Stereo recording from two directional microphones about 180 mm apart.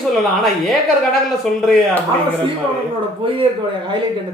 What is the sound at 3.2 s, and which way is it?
Speech, 30° right (ahead or behind).